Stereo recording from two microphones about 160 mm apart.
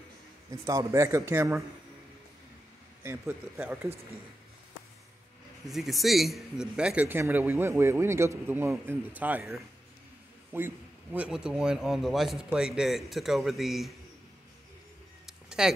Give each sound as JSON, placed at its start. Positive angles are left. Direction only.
{"t": 0.7, "sound": "a man's voice", "side_deg": -20}
{"t": 3.0, "sound": "a man's voice", "side_deg": -15}
{"t": 5.7, "sound": "a man's voice", "side_deg": 0}
{"t": 15.2, "sound": "a sound", "side_deg": -5}